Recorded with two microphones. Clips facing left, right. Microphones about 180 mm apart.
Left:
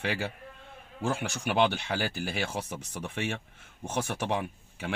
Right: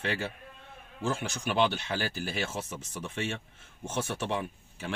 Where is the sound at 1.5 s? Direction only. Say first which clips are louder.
Left 1 dB; 60° left (ahead or behind).